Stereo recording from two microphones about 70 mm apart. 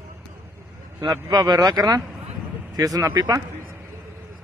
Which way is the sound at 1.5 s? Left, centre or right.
Right.